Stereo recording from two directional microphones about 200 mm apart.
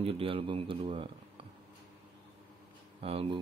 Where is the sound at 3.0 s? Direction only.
30° right (ahead or behind).